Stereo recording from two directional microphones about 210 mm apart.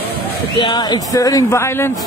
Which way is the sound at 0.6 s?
20° left (ahead or behind).